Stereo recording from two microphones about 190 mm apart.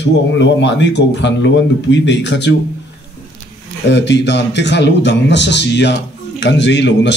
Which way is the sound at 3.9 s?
65° left (ahead or behind).